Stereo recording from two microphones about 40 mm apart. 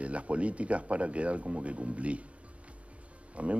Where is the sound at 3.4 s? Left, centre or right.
Right.